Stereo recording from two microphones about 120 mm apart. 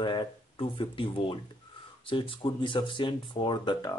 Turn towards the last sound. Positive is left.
turn(degrees=40)  # may be behind; listen again after turning